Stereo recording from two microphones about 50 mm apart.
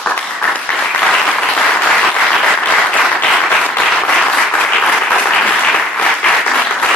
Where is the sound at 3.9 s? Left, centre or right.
Centre.